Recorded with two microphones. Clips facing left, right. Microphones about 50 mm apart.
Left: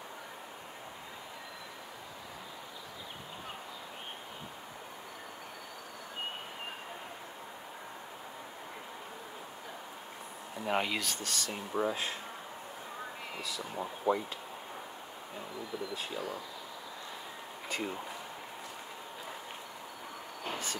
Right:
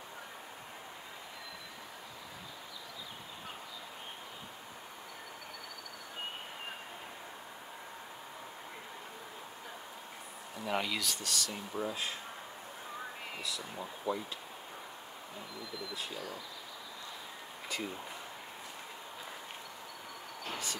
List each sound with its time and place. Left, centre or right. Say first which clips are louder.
10.6 s speech: left 2 dB; left
13.7 s speech: left 7 dB; left
15.9 s speech: left 3 dB; left
17.7 s speech: left 3 dB; left